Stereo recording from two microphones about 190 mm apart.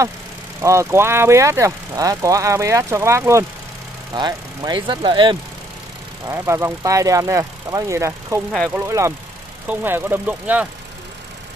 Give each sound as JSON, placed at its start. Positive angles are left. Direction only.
{"t": 0.6, "sound": "speech", "side_deg": -15}
{"t": 6.2, "sound": "speech", "side_deg": -15}